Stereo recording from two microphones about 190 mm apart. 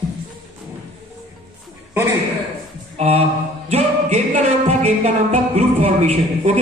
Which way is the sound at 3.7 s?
35° right (ahead or behind).